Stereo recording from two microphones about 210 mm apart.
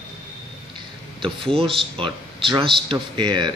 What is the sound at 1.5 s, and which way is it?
Speech, 25° right (ahead or behind).